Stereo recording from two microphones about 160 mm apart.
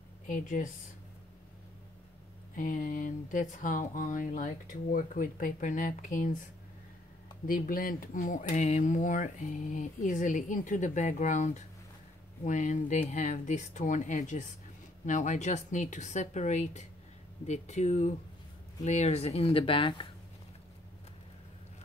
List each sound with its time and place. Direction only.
0.3 s speech: 50° left (ahead or behind)
2.5 s speech: 55° left (ahead or behind)
7.4 s speech: 65° left (ahead or behind); by 20.1 s 30° left (ahead or behind)